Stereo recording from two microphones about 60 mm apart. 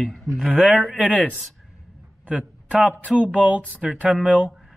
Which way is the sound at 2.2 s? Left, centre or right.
Centre.